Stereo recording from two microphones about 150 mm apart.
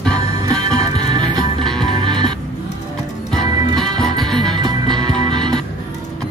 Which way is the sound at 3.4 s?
30° right (ahead or behind).